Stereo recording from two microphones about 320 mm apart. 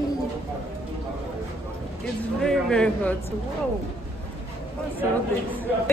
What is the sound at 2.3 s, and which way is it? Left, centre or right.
Speech, centre.